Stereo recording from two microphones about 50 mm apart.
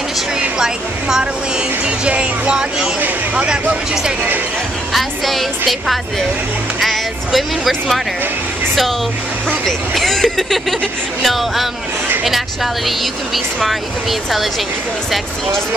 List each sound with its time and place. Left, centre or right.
0.6 s a sound: centre
1.9 s music: right
4.9 s music: centre
6.8 s speech: centre
9.7 s speech: centre